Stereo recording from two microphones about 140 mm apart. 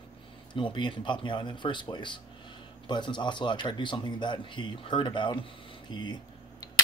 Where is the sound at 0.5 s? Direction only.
35° left (ahead or behind).